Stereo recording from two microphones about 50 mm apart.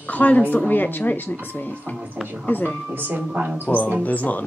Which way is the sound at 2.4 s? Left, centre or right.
Left.